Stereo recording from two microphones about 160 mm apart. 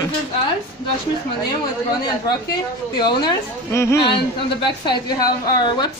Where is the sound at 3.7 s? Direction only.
15° left (ahead or behind).